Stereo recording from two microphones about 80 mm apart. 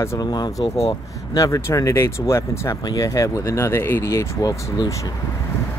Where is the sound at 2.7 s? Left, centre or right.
Left.